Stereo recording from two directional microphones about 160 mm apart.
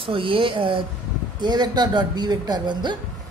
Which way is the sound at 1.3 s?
25° right (ahead or behind).